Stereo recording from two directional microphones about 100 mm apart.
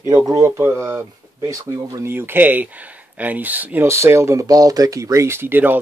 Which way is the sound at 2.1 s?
20° right (ahead or behind).